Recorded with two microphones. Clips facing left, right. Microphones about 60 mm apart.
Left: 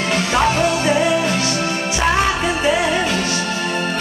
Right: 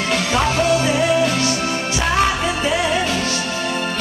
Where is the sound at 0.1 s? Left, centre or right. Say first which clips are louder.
Left 2 dB; centre.